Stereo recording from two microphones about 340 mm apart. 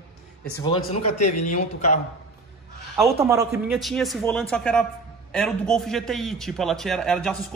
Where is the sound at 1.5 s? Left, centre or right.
Left.